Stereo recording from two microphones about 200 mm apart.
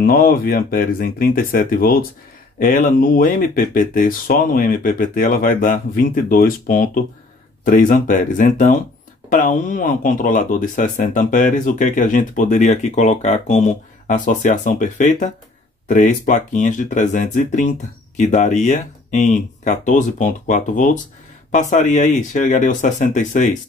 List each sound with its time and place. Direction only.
0.0 s speech: 45° left (ahead or behind)